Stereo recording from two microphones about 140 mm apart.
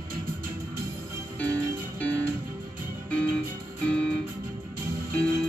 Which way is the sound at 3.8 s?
5° left (ahead or behind).